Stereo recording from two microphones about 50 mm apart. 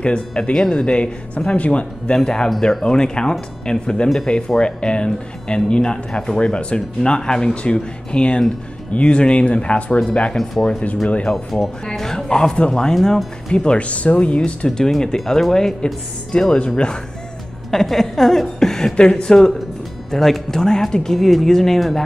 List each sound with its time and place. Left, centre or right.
0.0 s speech: centre
2.1 s speech: centre
10.3 s speech: centre
12.9 s speech: centre; by 14.7 s left
14.7 s speech: centre
17.6 s speech: centre